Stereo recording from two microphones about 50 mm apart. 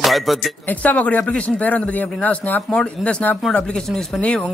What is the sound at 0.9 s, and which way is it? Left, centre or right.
A man's voice, left.